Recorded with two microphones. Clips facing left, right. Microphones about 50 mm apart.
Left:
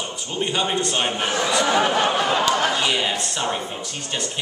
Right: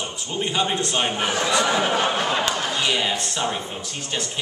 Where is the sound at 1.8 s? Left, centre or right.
Left.